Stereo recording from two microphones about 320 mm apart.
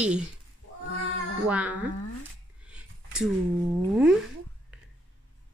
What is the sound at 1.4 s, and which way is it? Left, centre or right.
Speech, centre.